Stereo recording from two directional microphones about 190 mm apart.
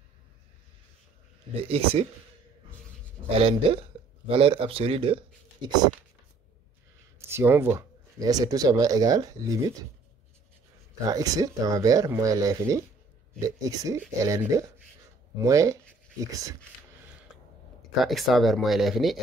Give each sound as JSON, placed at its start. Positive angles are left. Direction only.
{"t": 1.5, "sound": "speech", "side_deg": -30}
{"t": 3.3, "sound": "speech", "side_deg": -30}
{"t": 7.2, "sound": "speech", "side_deg": -15}
{"t": 11.1, "sound": "speech", "side_deg": -20}
{"t": 17.9, "sound": "speech", "side_deg": 0}